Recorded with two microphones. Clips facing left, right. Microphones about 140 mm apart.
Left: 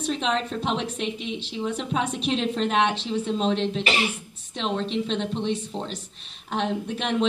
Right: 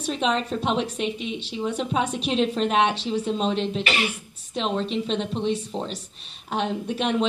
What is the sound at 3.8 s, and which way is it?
Speech, 30° left (ahead or behind).